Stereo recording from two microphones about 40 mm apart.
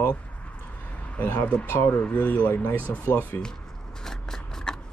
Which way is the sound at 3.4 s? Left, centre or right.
Centre.